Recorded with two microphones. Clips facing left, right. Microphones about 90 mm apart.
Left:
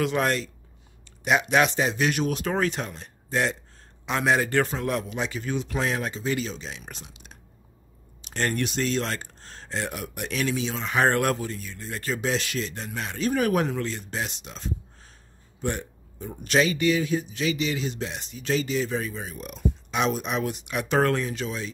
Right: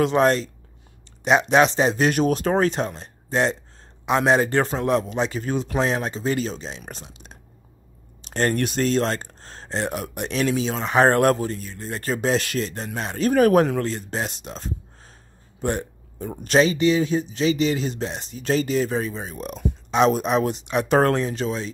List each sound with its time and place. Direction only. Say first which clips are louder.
0.0 s speech: right 6 dB; 30° right (ahead or behind)
15.6 s hiccup: right 5 dB; 40° right (ahead or behind)
16.4 s speech: right 4 dB; 30° right (ahead or behind)